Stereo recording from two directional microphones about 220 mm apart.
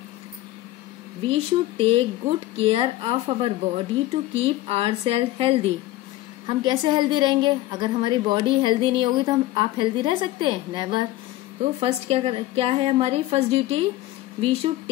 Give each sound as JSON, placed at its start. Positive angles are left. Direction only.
{"t": 1.2, "sound": "a woman's voice", "side_deg": -25}